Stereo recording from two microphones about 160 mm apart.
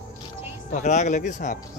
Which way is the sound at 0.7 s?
45° left (ahead or behind).